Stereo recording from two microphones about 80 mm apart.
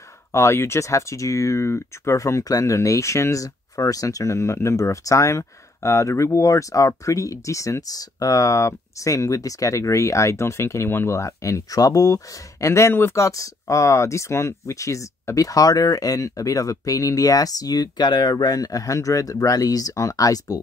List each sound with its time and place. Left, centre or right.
0.3 s speech: left